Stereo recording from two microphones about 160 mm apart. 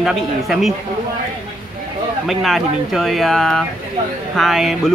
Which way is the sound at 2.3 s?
Centre (ahead or behind).